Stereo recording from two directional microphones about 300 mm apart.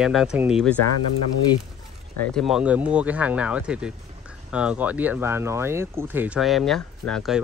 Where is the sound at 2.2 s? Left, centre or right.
Centre.